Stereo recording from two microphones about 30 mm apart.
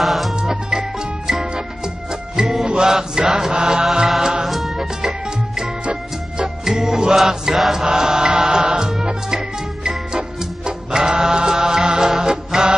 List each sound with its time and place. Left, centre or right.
0.0 s music: centre
0.4 s music: right
1.2 s music: centre
2.6 s mantra: right
4.2 s music: centre
6.6 s music: centre
7.2 s music: centre
7.8 s music: right
10.9 s mantra: right
12.2 s music: right